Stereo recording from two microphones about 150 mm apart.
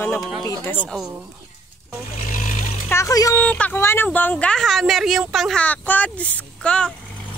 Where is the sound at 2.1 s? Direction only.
60° left (ahead or behind).